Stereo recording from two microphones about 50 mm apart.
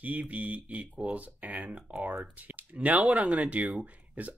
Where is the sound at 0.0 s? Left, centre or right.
Right.